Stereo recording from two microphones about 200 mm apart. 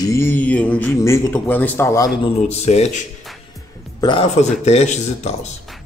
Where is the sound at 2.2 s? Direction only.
30° left (ahead or behind).